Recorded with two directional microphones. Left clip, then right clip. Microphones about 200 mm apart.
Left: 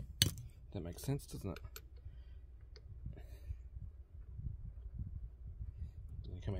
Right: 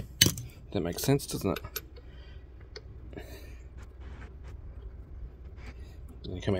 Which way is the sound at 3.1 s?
25° left (ahead or behind).